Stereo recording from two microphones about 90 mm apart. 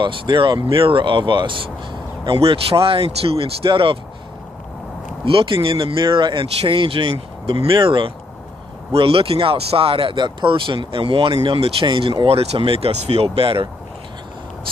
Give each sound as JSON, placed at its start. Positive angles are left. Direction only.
{"t": 0.0, "sound": "speech", "side_deg": -60}
{"t": 2.2, "sound": "speech", "side_deg": -90}
{"t": 5.2, "sound": "speech", "side_deg": -80}
{"t": 7.6, "sound": "speech", "side_deg": -65}
{"t": 8.9, "sound": "speech", "side_deg": -90}
{"t": 11.4, "sound": "speech", "side_deg": -80}